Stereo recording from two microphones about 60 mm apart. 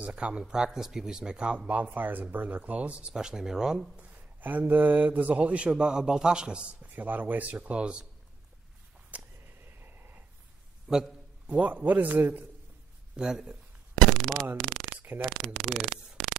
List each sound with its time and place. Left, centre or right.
0.0 s speech: right
4.4 s speech: right; by 6.6 s centre
6.8 s speech: right
9.7 s snort: right
10.9 s a man's voice: centre; by 12.4 s right
13.1 s a sound: centre
15.0 s a sound: right
15.2 s speech: centre